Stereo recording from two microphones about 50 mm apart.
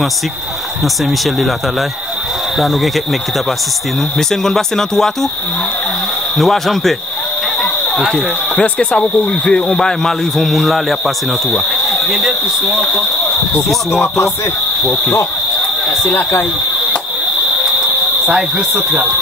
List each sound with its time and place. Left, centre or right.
4.3 s speech: centre
6.3 s speech: centre
8.5 s speech: left; by 11.0 s centre
12.3 s speech: right
16.0 s speech: left